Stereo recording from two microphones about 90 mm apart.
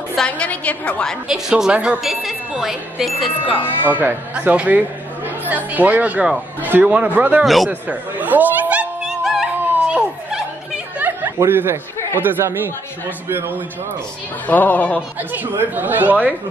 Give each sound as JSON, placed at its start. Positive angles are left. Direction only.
{"t": 0.1, "sound": "a woman's voice", "side_deg": 10}
{"t": 1.3, "sound": "a woman's voice", "side_deg": -10}
{"t": 3.8, "sound": "speech", "side_deg": -20}
{"t": 7.4, "sound": "a woman's voice", "side_deg": 0}
{"t": 7.9, "sound": "a sound", "side_deg": -20}
{"t": 9.2, "sound": "music", "side_deg": -5}
{"t": 9.6, "sound": "a sound", "side_deg": -15}
{"t": 11.3, "sound": "speech", "side_deg": -25}
{"t": 14.5, "sound": "a woman's voice", "side_deg": 15}
{"t": 15.1, "sound": "speech", "side_deg": -20}